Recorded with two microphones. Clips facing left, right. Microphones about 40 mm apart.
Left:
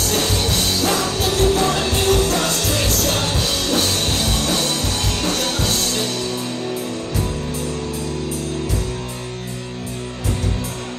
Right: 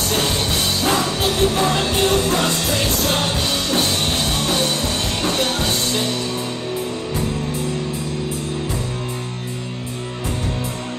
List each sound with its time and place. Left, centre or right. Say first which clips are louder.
0.1 s music: even; right